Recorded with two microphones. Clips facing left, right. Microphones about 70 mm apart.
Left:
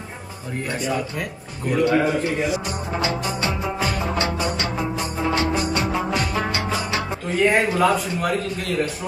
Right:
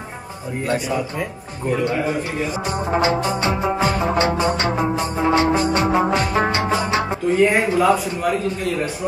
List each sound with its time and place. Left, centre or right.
1.7 s speech: right
7.5 s speech: centre